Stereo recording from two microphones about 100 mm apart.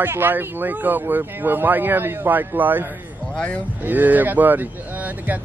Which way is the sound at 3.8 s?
20° right (ahead or behind).